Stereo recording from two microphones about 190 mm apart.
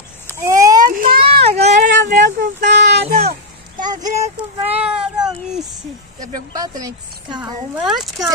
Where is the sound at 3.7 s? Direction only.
20° right (ahead or behind).